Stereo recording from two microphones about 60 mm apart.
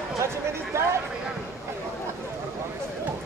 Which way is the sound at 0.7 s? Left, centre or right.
Right.